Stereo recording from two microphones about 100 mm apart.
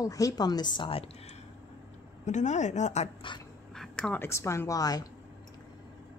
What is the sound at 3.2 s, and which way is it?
Speech, 55° left (ahead or behind).